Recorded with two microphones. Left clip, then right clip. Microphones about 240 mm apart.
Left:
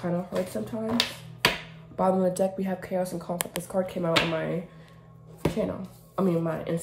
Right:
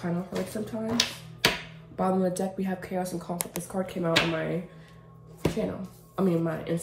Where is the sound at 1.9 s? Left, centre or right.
Left.